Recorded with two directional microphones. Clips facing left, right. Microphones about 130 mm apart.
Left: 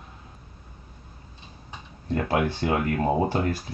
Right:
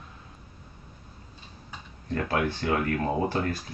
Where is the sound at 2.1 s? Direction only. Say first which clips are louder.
Left 3 dB; 20° left (ahead or behind).